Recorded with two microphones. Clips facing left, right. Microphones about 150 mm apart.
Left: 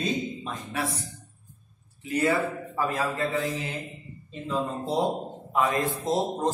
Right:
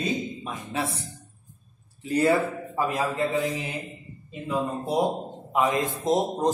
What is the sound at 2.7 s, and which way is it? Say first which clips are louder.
A man's voice: right 2 dB; 15° right (ahead or behind).